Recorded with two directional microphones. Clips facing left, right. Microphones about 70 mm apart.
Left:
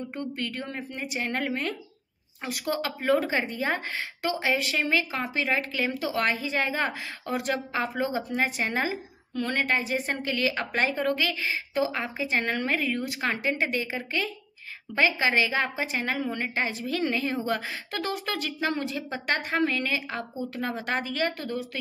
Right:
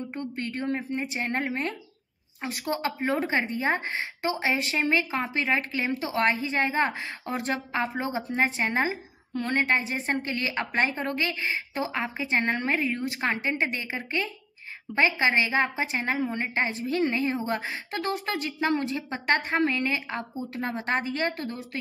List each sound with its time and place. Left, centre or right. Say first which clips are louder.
0.2 s a woman's voice: right 2 dB; right